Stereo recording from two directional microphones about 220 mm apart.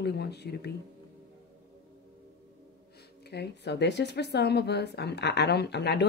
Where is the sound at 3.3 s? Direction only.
50° left (ahead or behind).